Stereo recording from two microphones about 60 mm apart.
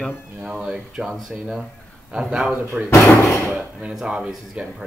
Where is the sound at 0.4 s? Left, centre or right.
Centre.